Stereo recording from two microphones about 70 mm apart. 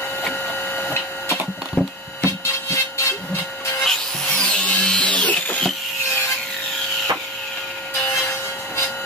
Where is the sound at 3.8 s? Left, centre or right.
Centre.